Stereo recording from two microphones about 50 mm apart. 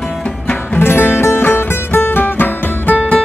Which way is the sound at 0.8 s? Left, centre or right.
Left.